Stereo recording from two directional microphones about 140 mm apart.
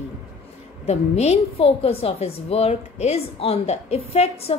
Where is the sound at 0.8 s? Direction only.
50° left (ahead or behind).